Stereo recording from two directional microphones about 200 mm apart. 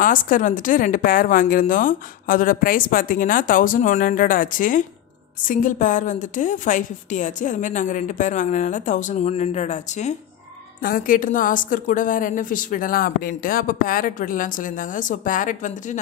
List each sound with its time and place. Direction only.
0.0 s a woman's voice: 40° left (ahead or behind)